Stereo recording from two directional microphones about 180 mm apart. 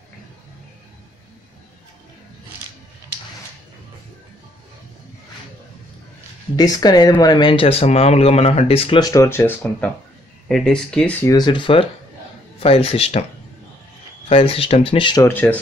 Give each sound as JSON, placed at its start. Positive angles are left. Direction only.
{"t": 6.5, "sound": "speech", "side_deg": 20}
{"t": 10.5, "sound": "speech", "side_deg": 5}
{"t": 11.2, "sound": "speech", "side_deg": 20}
{"t": 14.3, "sound": "speech", "side_deg": 30}
{"t": 15.2, "sound": "speech", "side_deg": 10}